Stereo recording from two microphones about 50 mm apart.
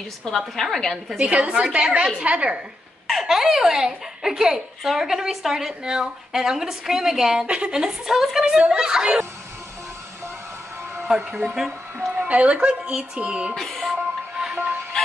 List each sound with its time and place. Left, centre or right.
0.2 s a woman's voice: centre
1.0 s a woman's voice: centre
3.1 s a woman's voice: centre
7.4 s a woman's voice: right
8.2 s a woman's voice: centre
8.5 s a woman's voice: centre
11.1 s a woman's voice: centre
12.1 s speech: right
13.6 s music: centre